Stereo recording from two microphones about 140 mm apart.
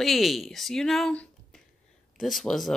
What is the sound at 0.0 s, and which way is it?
Speech, centre (ahead or behind).